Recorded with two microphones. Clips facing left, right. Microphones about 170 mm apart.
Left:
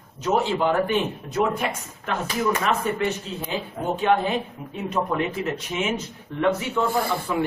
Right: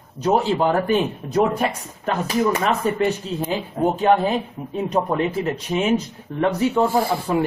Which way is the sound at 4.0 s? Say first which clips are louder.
Right 2 dB; 35° right (ahead or behind).